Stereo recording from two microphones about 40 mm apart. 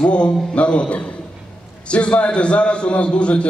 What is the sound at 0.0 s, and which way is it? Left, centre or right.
A man's voice, left.